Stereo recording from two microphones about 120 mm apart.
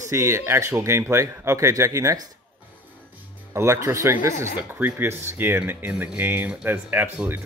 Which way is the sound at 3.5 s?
25° right (ahead or behind).